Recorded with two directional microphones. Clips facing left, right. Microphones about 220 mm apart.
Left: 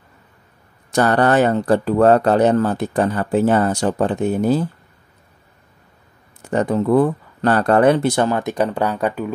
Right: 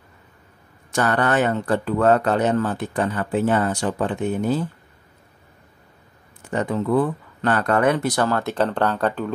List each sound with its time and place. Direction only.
0.9 s speech: 35° left (ahead or behind)
6.5 s speech: 40° left (ahead or behind); by 9.3 s 10° left (ahead or behind)